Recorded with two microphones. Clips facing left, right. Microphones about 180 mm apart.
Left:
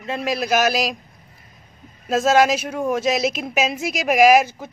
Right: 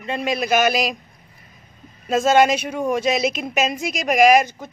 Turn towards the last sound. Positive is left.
turn(degrees=5)  # may be behind; listen again after turning